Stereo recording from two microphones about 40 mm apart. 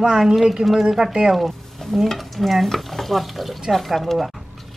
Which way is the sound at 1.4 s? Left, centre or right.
Centre.